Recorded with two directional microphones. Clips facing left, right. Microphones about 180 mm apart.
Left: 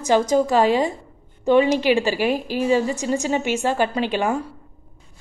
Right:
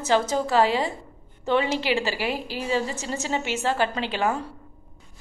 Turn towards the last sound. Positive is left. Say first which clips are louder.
# left 4 dB
turn(degrees=15)  # may be behind; listen again after turning